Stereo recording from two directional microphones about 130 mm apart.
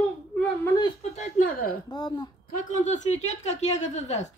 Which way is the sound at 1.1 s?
80° left.